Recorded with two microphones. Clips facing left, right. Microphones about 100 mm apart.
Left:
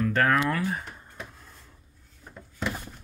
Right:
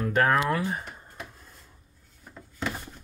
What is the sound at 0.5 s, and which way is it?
Speech, 20° right (ahead or behind).